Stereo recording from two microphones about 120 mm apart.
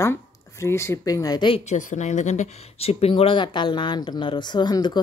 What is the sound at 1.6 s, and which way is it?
Speech, 80° left.